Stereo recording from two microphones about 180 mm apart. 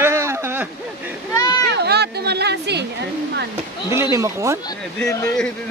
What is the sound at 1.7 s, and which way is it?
Speech, 65° right (ahead or behind).